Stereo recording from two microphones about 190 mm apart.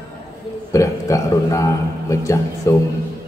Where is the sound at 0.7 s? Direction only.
15° left (ahead or behind).